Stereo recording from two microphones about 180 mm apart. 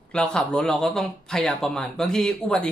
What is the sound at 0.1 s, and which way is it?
Speech, 5° left (ahead or behind).